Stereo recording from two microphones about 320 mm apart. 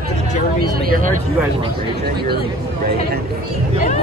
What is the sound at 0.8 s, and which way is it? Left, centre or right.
Speech, right.